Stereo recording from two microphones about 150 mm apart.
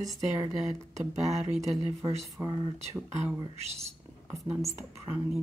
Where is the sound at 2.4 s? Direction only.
20° right (ahead or behind).